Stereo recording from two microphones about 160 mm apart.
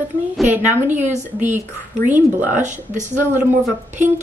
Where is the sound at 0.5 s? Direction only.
10° right (ahead or behind).